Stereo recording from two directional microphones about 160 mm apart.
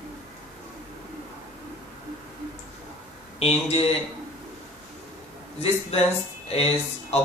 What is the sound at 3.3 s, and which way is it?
Speech, 40° left (ahead or behind).